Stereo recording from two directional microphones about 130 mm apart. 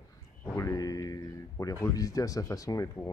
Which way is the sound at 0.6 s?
25° left (ahead or behind).